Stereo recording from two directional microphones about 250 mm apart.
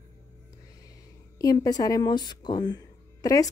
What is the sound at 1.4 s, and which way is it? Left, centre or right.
Speech, centre.